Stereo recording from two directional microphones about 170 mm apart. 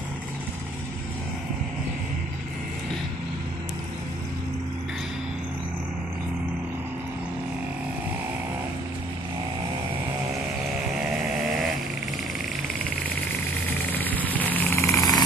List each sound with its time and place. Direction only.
13.9 s vehicle: 10° left (ahead or behind)